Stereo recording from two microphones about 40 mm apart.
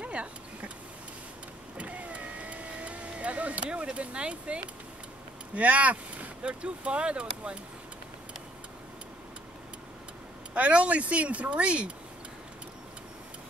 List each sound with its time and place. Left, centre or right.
0.0 s vehicle: right
1.8 s vehicle: right
5.5 s speech: right
10.5 s speech: right